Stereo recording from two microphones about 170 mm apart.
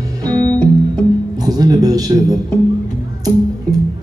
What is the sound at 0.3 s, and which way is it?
Music, 10° left (ahead or behind).